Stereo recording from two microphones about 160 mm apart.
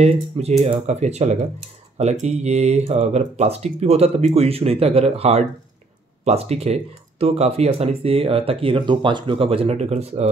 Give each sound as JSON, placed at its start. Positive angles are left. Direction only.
{"t": 0.0, "sound": "speech", "side_deg": -40}